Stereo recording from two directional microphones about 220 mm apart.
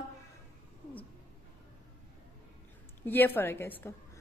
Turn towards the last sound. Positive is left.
turn(degrees=10)  # may be behind; listen again after turning